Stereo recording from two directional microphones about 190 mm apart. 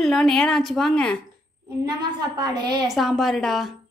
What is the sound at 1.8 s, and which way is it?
A woman's voice, 20° right (ahead or behind).